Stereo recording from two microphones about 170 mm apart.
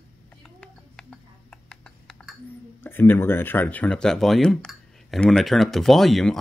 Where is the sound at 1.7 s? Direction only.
5° left (ahead or behind).